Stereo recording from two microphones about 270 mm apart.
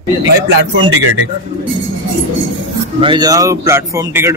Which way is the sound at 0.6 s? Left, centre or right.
Right.